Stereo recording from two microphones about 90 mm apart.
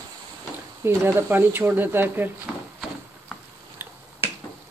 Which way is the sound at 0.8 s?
20° right (ahead or behind).